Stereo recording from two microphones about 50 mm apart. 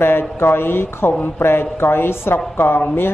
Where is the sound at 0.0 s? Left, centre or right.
Left.